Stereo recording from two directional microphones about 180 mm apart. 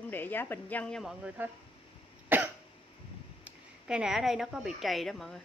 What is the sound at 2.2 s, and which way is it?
Cough, 10° right (ahead or behind).